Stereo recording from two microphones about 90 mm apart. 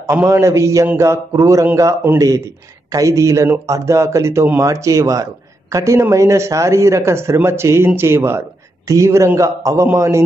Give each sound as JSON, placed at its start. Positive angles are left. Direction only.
{"t": 0.1, "sound": "a man's voice", "side_deg": -30}